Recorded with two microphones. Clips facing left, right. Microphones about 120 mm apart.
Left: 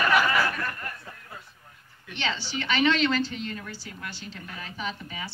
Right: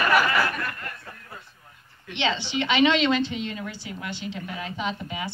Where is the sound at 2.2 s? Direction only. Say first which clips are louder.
Right 5 dB; 20° right (ahead or behind).